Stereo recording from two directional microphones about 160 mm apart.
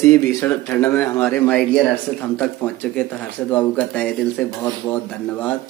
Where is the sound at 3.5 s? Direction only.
10° left (ahead or behind).